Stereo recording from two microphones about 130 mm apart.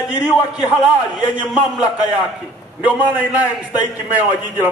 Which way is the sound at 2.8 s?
15° right (ahead or behind).